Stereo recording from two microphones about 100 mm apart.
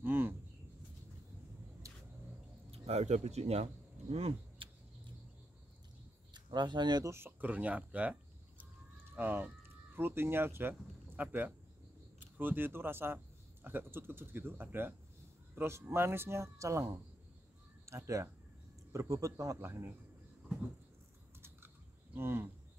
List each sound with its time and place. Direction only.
0.0 s a sound: 20° right (ahead or behind)
1.8 s vehicle: 30° right (ahead or behind)
2.7 s speech: 90° right
4.1 s vehicle: 70° right (ahead or behind)
6.3 s speech: 50° right (ahead or behind)
7.1 s a man's voice: 20° right (ahead or behind)
21.4 s typing: 25° right (ahead or behind)